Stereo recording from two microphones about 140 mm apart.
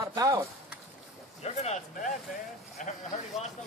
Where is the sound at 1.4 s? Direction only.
50° left (ahead or behind).